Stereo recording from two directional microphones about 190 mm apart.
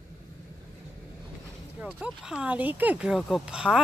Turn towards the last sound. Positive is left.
turn(degrees=-5)  # may be behind; listen again after turning